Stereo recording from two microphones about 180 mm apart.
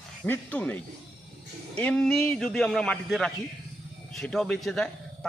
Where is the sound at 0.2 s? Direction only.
10° left (ahead or behind).